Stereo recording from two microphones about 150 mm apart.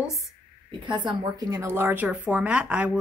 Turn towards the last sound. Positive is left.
turn(degrees=-10)  # may be behind; listen again after turning